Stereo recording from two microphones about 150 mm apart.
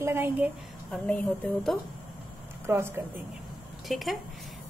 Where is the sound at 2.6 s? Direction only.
15° right (ahead or behind).